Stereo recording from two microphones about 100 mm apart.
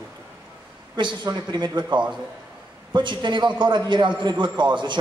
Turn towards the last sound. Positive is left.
turn(degrees=-50)  # may be behind; listen again after turning